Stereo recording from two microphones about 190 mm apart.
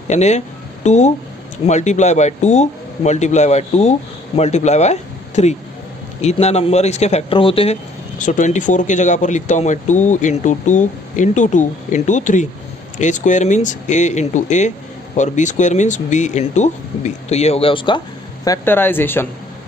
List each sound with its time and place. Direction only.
0.1 s a man's voice: 35° left (ahead or behind); by 19.2 s 10° left (ahead or behind)